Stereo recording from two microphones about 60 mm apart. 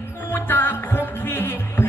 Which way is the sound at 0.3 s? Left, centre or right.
Left.